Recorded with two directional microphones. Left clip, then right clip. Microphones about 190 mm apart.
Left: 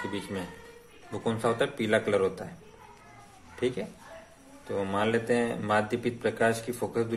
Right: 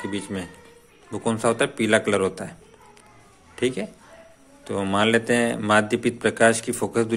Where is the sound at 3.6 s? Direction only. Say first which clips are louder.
Right 6 dB; 30° right (ahead or behind).